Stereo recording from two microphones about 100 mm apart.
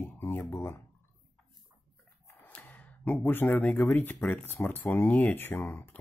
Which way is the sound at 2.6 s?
20° left (ahead or behind).